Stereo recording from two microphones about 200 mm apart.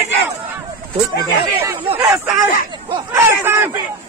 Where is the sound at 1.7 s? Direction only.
10° right (ahead or behind).